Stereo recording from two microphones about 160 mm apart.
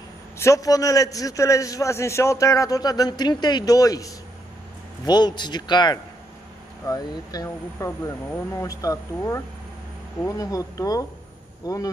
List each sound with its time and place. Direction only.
0.4 s a man's voice: 20° left (ahead or behind)